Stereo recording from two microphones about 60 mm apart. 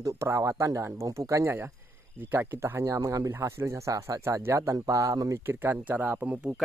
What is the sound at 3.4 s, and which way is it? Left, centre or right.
Speech, right.